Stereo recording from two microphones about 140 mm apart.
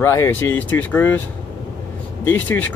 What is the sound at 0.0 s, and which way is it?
Speech, 20° left (ahead or behind).